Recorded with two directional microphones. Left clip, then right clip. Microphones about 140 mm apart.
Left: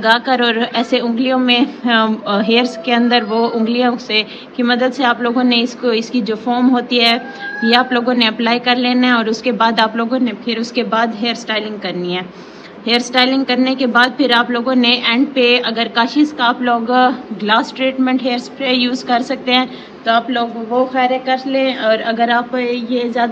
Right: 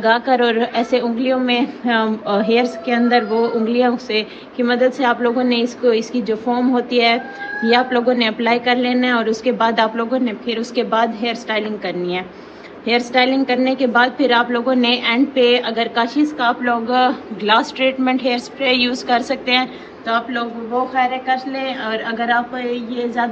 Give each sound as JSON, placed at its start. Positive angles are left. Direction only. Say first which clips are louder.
{"t": 0.0, "sound": "a woman's voice", "louder": "left 2 dB", "side_deg": 5}